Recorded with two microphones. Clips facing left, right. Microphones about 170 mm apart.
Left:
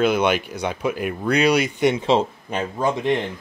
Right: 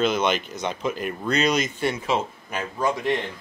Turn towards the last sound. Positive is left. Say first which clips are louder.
# left 3 dB
turn(degrees=20)  # may be behind; listen again after turning